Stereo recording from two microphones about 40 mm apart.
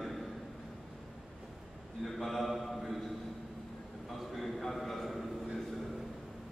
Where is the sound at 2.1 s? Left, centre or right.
Centre.